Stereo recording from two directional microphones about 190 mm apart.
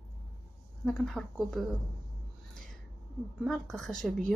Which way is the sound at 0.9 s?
5° left (ahead or behind).